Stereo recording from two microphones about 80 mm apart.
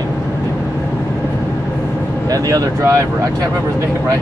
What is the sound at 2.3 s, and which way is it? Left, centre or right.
Speech, right.